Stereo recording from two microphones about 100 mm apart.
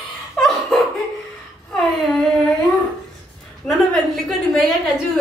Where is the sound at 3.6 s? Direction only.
Centre (ahead or behind).